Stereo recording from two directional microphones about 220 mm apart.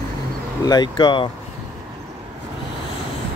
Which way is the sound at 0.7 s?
20° left (ahead or behind).